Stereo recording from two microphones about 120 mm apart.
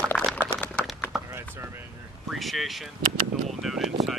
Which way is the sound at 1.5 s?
20° right (ahead or behind).